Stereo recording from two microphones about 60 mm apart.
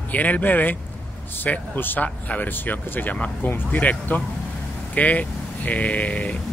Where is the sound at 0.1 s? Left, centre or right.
Left.